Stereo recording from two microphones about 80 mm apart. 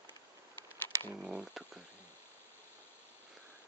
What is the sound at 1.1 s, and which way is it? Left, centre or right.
Speech, centre.